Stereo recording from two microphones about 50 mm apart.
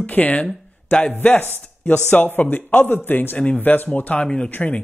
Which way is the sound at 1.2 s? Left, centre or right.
Left.